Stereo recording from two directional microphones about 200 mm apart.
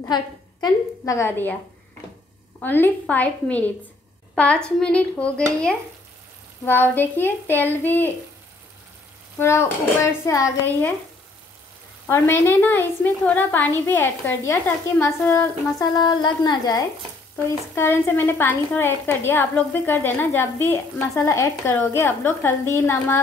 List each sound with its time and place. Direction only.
0.1 s a woman's voice: 20° left (ahead or behind)
2.6 s a woman's voice: 10° left (ahead or behind)
9.4 s a woman's voice: 15° left (ahead or behind)
12.1 s a woman's voice: 10° left (ahead or behind)
16.0 s a woman's voice: 20° left (ahead or behind)